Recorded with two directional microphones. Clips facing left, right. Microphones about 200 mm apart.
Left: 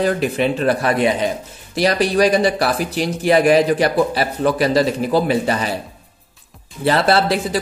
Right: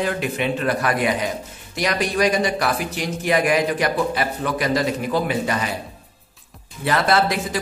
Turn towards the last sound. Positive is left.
turn(degrees=30)  # may be behind; listen again after turning